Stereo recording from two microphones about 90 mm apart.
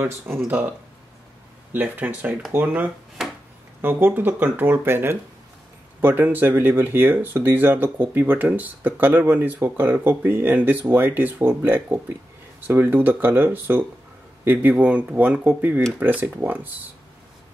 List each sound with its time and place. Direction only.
0.5 s speech: 20° right (ahead or behind)